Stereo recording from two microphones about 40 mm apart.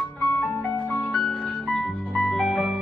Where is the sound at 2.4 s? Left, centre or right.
Right.